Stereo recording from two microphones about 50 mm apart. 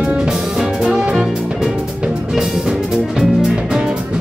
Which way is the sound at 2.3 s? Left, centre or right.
Centre.